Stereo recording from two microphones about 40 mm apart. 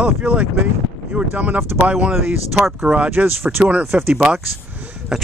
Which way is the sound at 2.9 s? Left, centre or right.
Centre.